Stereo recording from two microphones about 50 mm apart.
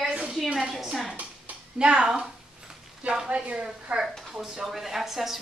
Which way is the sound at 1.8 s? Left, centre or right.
Centre.